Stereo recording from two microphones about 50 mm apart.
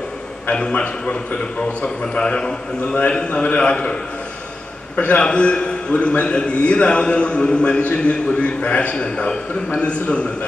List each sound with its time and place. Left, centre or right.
0.5 s a man's voice: left